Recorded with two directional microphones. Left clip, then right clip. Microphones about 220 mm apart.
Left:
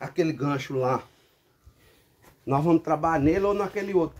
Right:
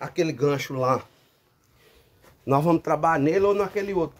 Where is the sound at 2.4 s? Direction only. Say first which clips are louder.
Right 2 dB; 50° right (ahead or behind).